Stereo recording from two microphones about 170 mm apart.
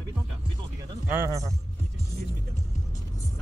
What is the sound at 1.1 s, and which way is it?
Speech, 15° right (ahead or behind).